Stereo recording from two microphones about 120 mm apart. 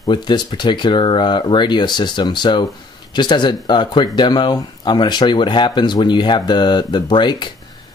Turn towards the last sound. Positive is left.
turn(degrees=40)  # may be behind; listen again after turning